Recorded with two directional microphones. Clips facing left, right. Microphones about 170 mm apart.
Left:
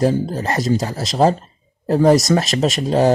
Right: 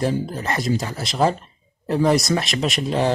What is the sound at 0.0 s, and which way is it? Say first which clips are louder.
Speech: left 5 dB; 35° left (ahead or behind).